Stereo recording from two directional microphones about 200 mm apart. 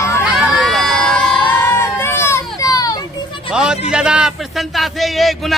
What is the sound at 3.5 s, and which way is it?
A man's voice, 5° right (ahead or behind).